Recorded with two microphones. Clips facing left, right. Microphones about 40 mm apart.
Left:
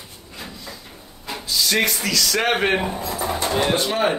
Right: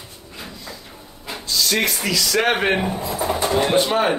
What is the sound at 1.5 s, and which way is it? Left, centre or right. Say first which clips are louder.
Speech: even; centre.